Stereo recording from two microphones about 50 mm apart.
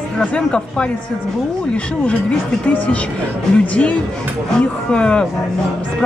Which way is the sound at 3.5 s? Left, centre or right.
Left.